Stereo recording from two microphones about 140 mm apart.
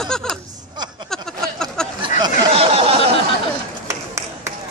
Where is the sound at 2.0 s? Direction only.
30° right (ahead or behind).